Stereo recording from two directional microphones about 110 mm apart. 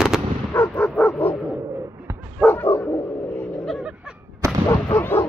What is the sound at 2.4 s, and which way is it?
Dog, 20° left (ahead or behind).